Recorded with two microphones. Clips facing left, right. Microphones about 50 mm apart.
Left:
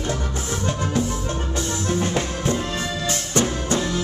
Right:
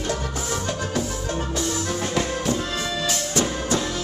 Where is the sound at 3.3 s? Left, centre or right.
Left.